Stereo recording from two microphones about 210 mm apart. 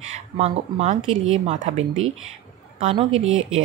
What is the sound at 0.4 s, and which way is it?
Speech, 30° right (ahead or behind).